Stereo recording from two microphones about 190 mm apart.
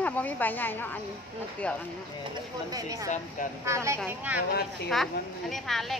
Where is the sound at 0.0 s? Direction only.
10° left (ahead or behind).